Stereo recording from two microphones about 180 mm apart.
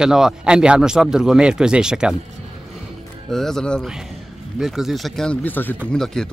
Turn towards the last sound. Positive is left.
turn(degrees=5)  # may be behind; listen again after turning